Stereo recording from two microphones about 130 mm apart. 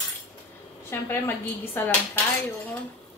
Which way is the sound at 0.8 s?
20° left (ahead or behind).